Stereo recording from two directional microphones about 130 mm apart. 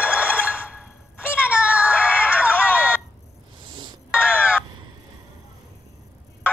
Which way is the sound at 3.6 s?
35° right (ahead or behind).